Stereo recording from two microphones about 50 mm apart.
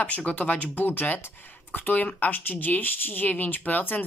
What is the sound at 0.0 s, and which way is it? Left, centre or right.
Speech, left.